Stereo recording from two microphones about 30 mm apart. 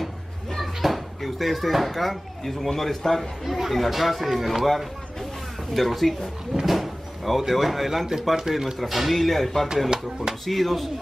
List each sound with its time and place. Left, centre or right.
0.6 s a man's voice: centre
3.4 s speech: centre
5.7 s speech: centre
6.6 s a sound: centre
8.4 s speech: centre
8.7 s speech: centre
9.8 s speech: right
10.4 s speech: centre